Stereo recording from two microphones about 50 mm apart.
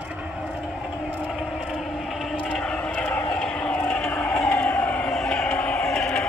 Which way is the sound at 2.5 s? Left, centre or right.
Left.